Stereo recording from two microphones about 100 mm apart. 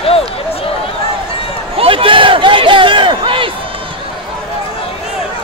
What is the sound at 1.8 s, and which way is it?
Crowd, 65° right (ahead or behind).